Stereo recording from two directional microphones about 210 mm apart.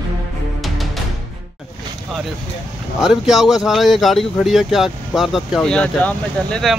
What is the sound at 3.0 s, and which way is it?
Speech, centre (ahead or behind).